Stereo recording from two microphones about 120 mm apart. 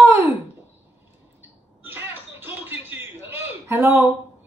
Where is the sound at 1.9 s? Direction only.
20° right (ahead or behind).